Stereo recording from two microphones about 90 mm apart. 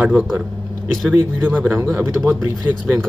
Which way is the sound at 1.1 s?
20° right (ahead or behind).